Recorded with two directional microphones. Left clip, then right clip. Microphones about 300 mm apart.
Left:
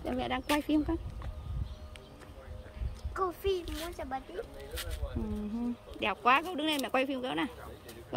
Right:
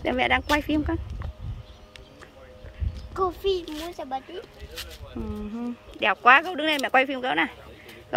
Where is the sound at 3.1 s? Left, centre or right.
Right.